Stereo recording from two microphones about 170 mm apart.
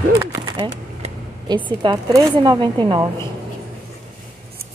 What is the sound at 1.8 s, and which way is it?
Speech, 25° right (ahead or behind).